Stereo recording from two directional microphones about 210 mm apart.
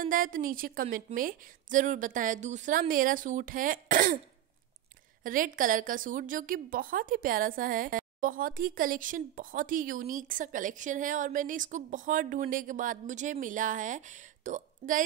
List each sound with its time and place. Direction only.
0.1 s a woman's voice: 40° right (ahead or behind)
5.2 s a woman's voice: 40° right (ahead or behind)